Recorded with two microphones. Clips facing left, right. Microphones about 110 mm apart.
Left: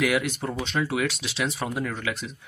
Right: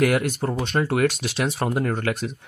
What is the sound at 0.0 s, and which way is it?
Speech, 50° right (ahead or behind).